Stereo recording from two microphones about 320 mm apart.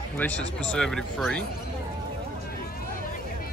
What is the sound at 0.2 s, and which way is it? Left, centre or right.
Speech, centre.